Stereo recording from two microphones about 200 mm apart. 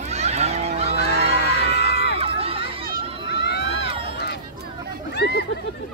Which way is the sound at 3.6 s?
25° right (ahead or behind).